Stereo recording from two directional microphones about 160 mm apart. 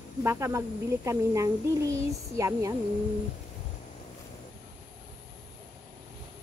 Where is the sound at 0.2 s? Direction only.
15° right (ahead or behind).